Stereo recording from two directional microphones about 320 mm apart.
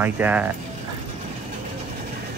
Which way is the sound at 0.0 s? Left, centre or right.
Centre.